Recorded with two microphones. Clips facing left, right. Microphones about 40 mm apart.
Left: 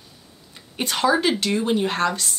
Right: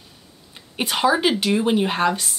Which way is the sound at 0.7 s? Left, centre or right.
Centre.